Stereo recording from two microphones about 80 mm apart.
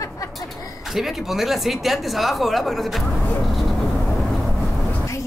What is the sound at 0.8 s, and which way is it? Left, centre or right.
Speech, centre.